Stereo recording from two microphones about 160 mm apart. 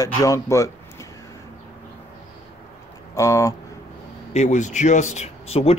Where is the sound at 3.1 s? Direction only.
20° left (ahead or behind).